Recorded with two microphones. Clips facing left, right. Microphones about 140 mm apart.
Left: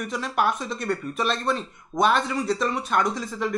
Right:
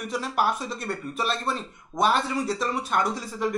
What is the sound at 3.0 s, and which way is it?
Speech, 5° right (ahead or behind).